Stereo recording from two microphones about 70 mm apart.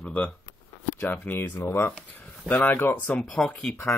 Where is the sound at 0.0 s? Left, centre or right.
Left.